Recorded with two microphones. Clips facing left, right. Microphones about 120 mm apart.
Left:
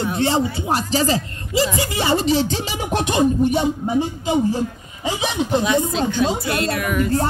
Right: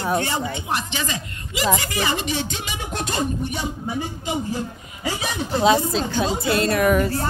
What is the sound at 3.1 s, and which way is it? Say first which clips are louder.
Music: left 9 dB; 20° left (ahead or behind).